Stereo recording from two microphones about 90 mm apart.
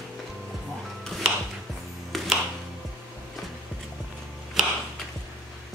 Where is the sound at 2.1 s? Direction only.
Centre (ahead or behind).